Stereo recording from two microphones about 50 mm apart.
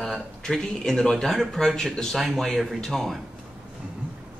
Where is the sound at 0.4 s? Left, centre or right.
Centre.